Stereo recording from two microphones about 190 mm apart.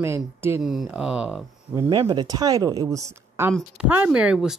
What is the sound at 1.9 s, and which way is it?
Speech, 25° right (ahead or behind).